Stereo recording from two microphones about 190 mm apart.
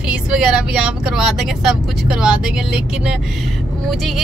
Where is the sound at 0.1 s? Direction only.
5° right (ahead or behind).